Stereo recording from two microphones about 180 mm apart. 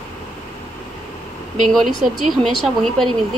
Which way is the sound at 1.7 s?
Centre (ahead or behind).